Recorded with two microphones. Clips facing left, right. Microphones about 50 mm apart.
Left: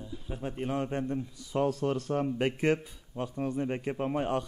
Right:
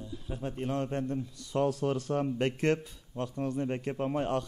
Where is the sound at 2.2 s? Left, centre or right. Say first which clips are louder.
Left 1 dB; centre.